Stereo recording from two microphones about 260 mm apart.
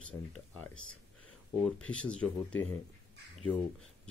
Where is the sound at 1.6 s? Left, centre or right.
Centre.